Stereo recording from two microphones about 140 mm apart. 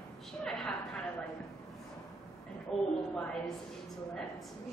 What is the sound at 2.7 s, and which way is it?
Speech, 5° left (ahead or behind).